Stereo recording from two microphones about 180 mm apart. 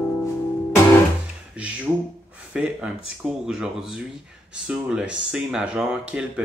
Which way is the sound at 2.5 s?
5° right (ahead or behind).